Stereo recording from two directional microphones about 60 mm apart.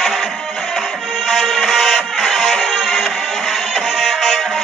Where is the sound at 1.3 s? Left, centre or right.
Centre.